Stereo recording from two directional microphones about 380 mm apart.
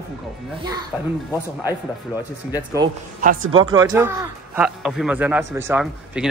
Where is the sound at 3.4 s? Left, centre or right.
Right.